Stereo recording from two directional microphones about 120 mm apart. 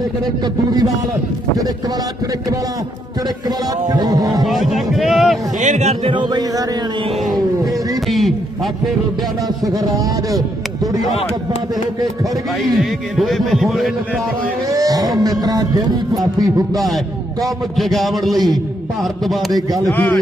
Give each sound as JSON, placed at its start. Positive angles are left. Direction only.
{"t": 3.9, "sound": "speech", "side_deg": -30}
{"t": 4.5, "sound": "a man's voice", "side_deg": 0}
{"t": 5.6, "sound": "a man's voice", "side_deg": -80}
{"t": 6.0, "sound": "speech", "side_deg": -40}
{"t": 8.1, "sound": "a man's voice", "side_deg": 0}
{"t": 9.7, "sound": "speech", "side_deg": -30}
{"t": 12.7, "sound": "a man's voice", "side_deg": 0}
{"t": 14.7, "sound": "speech", "side_deg": -30}
{"t": 16.8, "sound": "a man's voice", "side_deg": 0}
{"t": 19.9, "sound": "a man's voice", "side_deg": 15}